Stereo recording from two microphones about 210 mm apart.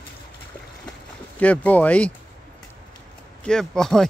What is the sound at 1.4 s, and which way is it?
Speech, 5° left (ahead or behind).